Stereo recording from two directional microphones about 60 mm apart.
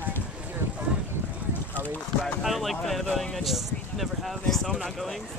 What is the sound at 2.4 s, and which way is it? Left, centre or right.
Speech, centre.